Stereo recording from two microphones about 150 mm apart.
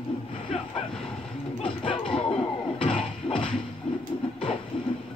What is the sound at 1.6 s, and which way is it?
Music, 35° left (ahead or behind).